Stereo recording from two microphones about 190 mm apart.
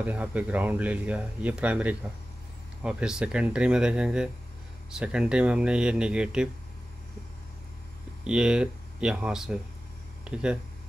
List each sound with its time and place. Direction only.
0.0 s speech: 10° right (ahead or behind)
8.2 s speech: 5° right (ahead or behind)